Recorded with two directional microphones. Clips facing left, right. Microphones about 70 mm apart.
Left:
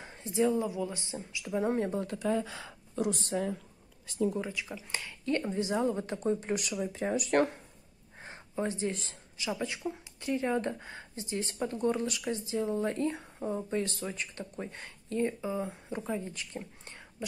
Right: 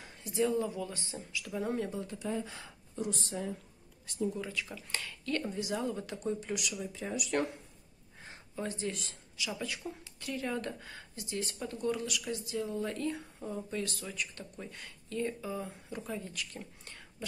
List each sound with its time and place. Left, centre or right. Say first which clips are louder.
0.0 s speech: left 3 dB; left
2.0 s speech: left 6 dB; left
3.1 s a woman's voice: left 7 dB; left
4.4 s speech: left 3 dB; centre; by 7.5 s left
8.2 s a sound: left 5 dB; left
9.5 s speech: left 6 dB; left